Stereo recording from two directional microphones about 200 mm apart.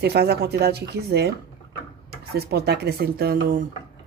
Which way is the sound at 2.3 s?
50° right (ahead or behind).